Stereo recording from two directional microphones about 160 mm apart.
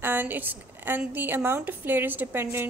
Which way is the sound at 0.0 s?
15° right (ahead or behind).